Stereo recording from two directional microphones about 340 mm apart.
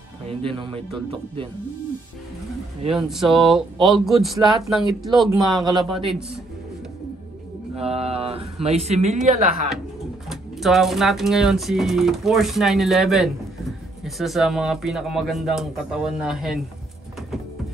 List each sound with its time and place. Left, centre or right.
0.3 s speech: centre
3.0 s speech: centre
5.7 s speech: centre
7.7 s speech: centre
10.3 s speech: centre